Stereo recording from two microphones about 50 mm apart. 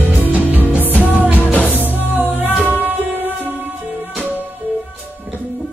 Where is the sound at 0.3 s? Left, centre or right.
Right.